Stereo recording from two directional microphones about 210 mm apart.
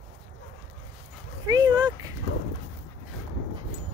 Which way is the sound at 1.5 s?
20° right (ahead or behind).